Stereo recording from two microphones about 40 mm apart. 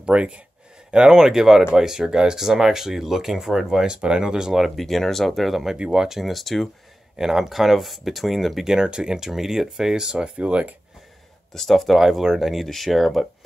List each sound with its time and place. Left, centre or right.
0.0 s speech: right; by 3.8 s centre
3.8 s speech: right
4.6 s speech: centre
5.8 s speech: centre
7.2 s speech: centre
8.6 s speech: centre
10.3 s speech: right
11.5 s speech: centre
12.0 s speech: centre